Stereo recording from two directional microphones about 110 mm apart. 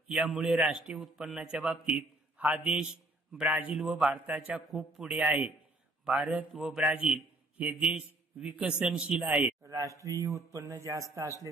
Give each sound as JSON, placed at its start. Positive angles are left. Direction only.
{"t": 0.1, "sound": "a man's voice", "side_deg": -5}
{"t": 3.5, "sound": "a man's voice", "side_deg": -15}
{"t": 3.8, "sound": "a man's voice", "side_deg": -5}
{"t": 4.1, "sound": "a man's voice", "side_deg": -15}
{"t": 4.6, "sound": "a man's voice", "side_deg": 0}
{"t": 5.2, "sound": "a man's voice", "side_deg": -15}
{"t": 9.7, "sound": "a man's voice", "side_deg": -30}